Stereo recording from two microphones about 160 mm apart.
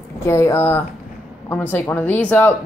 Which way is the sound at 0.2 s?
15° left (ahead or behind).